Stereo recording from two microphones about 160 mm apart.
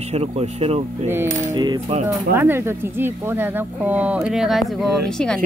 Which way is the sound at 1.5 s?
25° right (ahead or behind).